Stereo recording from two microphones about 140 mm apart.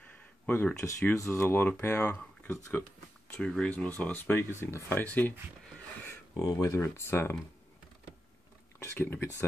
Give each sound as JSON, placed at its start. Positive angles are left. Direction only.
{"t": 0.5, "sound": "speech", "side_deg": 15}
{"t": 6.0, "sound": "speech", "side_deg": 25}
{"t": 8.7, "sound": "a sound", "side_deg": 15}